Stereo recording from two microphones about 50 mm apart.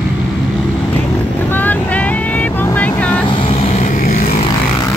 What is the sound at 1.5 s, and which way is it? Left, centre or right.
Vehicle, left.